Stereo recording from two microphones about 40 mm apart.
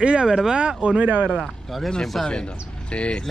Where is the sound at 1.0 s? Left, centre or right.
Right.